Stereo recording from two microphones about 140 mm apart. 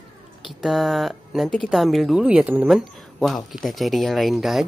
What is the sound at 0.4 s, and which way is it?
Speech, centre (ahead or behind).